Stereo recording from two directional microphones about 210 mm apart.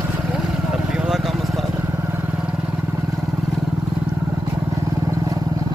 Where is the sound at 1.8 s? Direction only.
10° right (ahead or behind).